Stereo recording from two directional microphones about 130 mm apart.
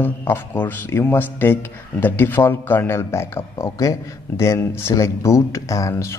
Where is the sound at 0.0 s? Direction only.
15° left (ahead or behind).